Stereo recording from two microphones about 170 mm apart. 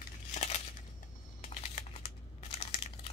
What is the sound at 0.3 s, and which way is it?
Crumpling, 40° left (ahead or behind).